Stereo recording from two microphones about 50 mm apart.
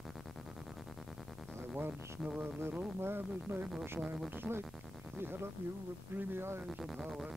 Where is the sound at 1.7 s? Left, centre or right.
Right.